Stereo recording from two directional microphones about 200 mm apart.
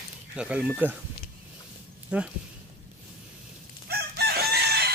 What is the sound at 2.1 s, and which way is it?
Speech, 5° right (ahead or behind).